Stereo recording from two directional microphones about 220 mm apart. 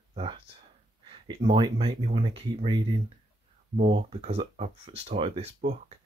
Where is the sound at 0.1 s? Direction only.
25° right (ahead or behind).